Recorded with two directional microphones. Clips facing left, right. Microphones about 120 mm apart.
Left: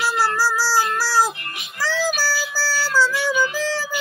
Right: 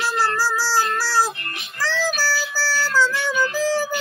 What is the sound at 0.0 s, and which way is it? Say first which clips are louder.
Music: left 1 dB; 10° left (ahead or behind).